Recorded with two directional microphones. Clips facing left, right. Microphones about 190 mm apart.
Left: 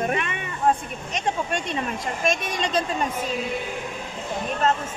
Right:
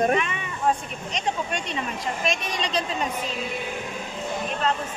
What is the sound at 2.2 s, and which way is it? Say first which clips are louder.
Speech: left 4 dB; 50° left (ahead or behind).